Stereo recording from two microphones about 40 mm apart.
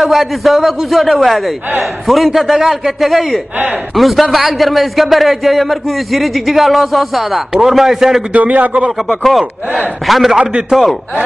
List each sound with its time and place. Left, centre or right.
0.0 s a man's voice: centre
8.3 s a man's voice: right
9.2 s a man's voice: centre